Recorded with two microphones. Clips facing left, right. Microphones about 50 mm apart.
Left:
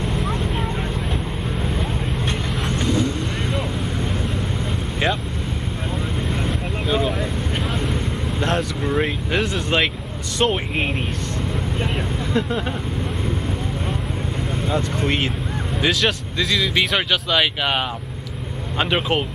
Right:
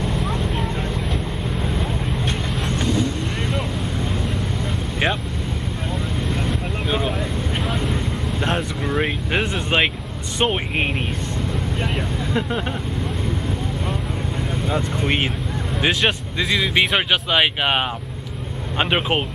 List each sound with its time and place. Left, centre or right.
0.0 s vehicle: centre
2.7 s vehicle: centre
6.9 s vehicle: centre
9.0 s vehicle: centre
10.4 s speech: centre
12.4 s speech: centre
14.7 s speech: centre